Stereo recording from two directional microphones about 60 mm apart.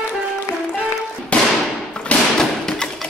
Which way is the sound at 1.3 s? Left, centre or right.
Centre.